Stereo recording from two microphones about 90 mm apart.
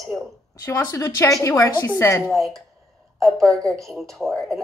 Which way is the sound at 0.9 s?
35° left (ahead or behind).